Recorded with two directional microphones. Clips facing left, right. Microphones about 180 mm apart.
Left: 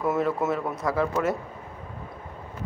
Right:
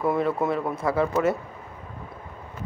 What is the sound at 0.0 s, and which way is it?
A man's voice, centre (ahead or behind).